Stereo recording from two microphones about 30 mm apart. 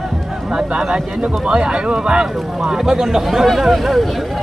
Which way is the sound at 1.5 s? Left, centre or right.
Right.